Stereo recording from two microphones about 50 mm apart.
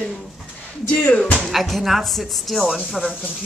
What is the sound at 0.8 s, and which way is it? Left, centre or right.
Speech, left.